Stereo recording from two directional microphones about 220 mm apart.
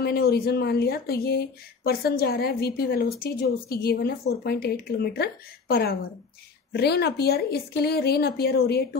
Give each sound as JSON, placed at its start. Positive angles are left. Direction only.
{"t": 0.0, "sound": "speech", "side_deg": 45}